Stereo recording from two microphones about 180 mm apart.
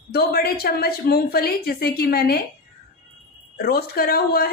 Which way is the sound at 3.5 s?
60° left (ahead or behind).